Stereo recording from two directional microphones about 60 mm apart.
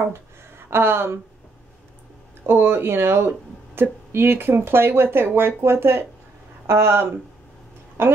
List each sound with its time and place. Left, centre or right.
0.1 s speech: right
2.4 s speech: right